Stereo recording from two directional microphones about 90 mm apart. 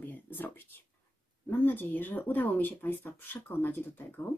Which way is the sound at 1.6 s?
20° left (ahead or behind).